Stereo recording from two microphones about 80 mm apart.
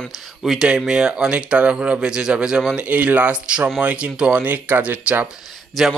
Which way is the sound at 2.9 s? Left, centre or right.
Centre.